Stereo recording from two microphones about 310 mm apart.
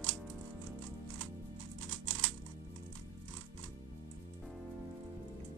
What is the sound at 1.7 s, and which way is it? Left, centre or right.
Music, right.